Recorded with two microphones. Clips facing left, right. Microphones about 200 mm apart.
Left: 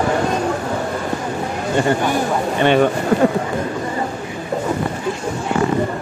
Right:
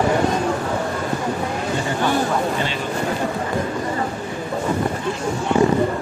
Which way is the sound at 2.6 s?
60° left (ahead or behind).